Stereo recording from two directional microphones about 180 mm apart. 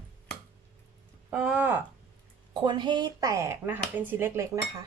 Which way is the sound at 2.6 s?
25° right (ahead or behind).